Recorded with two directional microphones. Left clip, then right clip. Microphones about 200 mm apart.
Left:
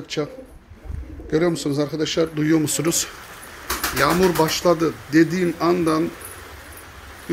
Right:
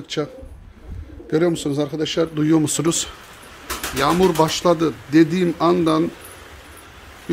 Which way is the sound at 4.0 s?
20° right (ahead or behind).